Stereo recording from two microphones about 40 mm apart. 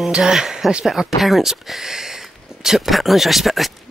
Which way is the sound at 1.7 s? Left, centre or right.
Centre.